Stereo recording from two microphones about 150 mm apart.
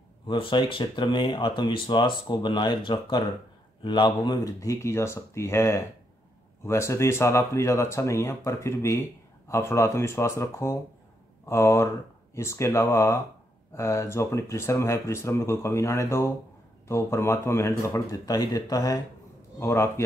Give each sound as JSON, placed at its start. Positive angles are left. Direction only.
{"t": 0.3, "sound": "speech", "side_deg": 35}